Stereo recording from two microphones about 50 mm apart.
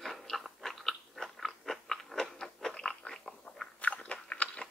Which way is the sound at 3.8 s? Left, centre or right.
Left.